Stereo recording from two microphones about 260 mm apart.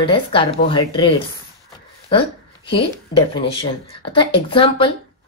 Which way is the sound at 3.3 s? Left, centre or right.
Centre.